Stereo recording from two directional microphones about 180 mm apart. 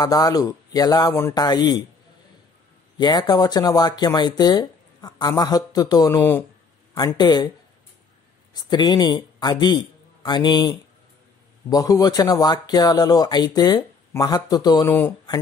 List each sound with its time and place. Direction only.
0.0 s speech: 20° left (ahead or behind)
3.0 s speech: 20° left (ahead or behind)
8.5 s a man's voice: 25° left (ahead or behind)
11.7 s speech: 20° left (ahead or behind)